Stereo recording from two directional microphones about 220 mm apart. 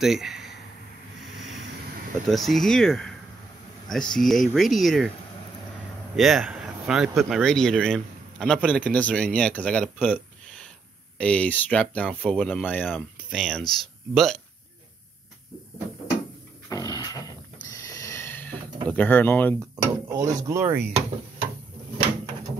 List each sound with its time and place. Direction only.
0.0 s speech: centre (ahead or behind)
2.2 s speech: centre (ahead or behind)
6.1 s speech: centre (ahead or behind)
16.6 s a sound: 15° left (ahead or behind)
19.7 s speech: 15° right (ahead or behind)